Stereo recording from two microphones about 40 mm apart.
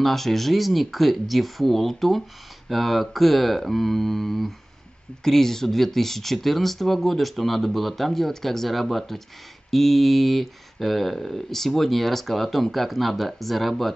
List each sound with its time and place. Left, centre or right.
0.0 s speech: centre